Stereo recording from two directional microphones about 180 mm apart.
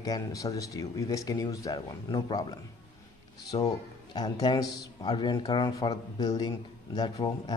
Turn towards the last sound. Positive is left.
turn(degrees=25)  # may be behind; listen again after turning